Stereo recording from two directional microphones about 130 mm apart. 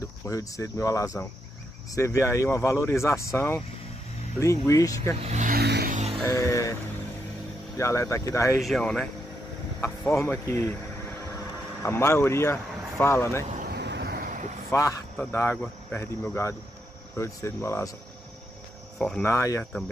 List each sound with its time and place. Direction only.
0.3 s speech: 25° left (ahead or behind)
5.2 s vehicle: 65° right (ahead or behind)
6.2 s music: 25° left (ahead or behind)
7.7 s speech: 25° left (ahead or behind)
8.5 s speech: centre (ahead or behind)
9.8 s speech: 20° left (ahead or behind)
11.8 s speech: 20° left (ahead or behind)
14.2 s vehicle: 90° right
14.7 s speech: 25° left (ahead or behind)
18.9 s speech: 5° left (ahead or behind)
19.2 s speech: 25° left (ahead or behind)